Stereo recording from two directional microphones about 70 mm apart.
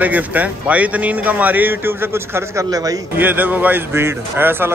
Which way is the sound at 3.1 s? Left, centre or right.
Right.